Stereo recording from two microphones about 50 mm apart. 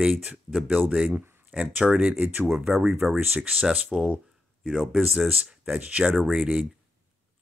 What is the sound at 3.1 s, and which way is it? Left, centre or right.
Speech, right.